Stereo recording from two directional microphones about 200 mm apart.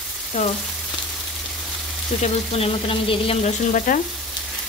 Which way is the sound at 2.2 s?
30° left (ahead or behind).